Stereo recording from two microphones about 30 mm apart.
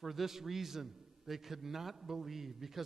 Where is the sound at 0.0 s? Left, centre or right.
Centre.